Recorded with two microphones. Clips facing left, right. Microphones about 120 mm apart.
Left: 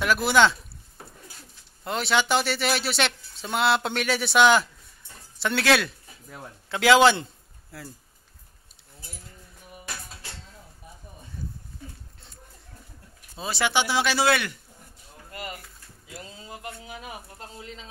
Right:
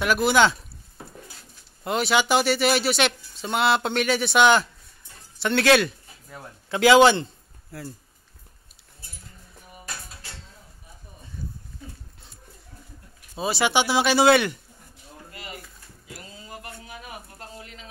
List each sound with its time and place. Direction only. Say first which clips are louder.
0.0 s speech: right 1 dB; centre (ahead or behind)
1.9 s a man's voice: right 2 dB; 5° right (ahead or behind)
13.4 s speech: right 3 dB; 15° right (ahead or behind)
16.3 s a sound: left 1 dB; 20° left (ahead or behind)